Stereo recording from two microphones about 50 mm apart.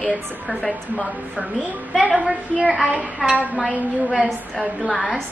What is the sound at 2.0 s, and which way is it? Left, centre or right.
A woman's voice, centre.